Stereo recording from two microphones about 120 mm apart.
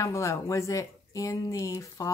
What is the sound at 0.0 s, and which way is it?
A woman's voice, 25° left (ahead or behind).